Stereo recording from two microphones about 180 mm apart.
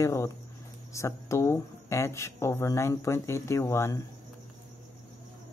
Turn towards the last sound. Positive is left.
turn(degrees=15)  # may be behind; listen again after turning